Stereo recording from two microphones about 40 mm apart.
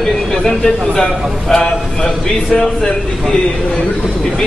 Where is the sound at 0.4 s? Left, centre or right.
Centre.